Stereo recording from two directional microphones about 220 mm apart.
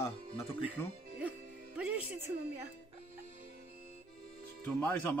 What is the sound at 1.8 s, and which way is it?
Music, 5° right (ahead or behind).